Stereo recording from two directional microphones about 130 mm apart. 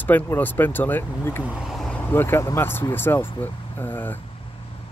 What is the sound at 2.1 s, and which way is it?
Speech, 15° left (ahead or behind).